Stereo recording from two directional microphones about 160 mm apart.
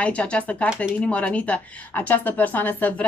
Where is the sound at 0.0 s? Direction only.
5° left (ahead or behind).